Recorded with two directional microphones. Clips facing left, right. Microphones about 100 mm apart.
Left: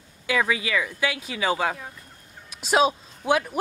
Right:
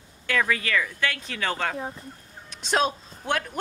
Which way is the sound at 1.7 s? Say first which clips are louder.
Right 8 dB; 30° right (ahead or behind).